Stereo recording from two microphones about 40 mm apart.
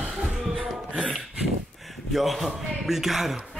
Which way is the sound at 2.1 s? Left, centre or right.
Centre.